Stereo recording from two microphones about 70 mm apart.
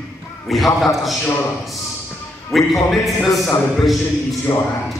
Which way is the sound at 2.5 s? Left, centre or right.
Centre.